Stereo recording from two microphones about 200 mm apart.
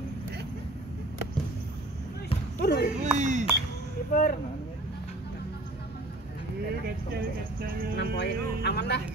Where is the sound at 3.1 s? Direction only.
35° right (ahead or behind).